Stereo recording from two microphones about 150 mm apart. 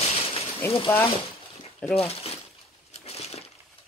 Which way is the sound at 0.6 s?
15° left (ahead or behind).